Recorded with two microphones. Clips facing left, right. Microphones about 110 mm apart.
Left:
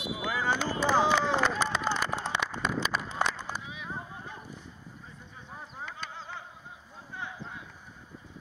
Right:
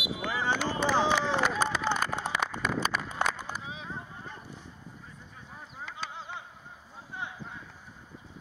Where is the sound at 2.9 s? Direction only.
30° left (ahead or behind).